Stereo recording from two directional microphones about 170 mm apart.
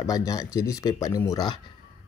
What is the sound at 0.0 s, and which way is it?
Speech, 20° left (ahead or behind).